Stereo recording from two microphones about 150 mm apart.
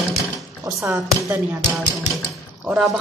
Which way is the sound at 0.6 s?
20° right (ahead or behind).